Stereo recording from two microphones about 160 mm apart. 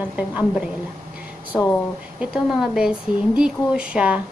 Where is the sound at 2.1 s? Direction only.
5° right (ahead or behind).